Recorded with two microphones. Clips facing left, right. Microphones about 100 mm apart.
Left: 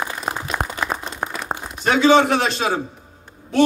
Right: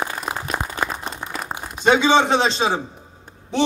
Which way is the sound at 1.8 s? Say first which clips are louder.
Left 1 dB; 20° right (ahead or behind).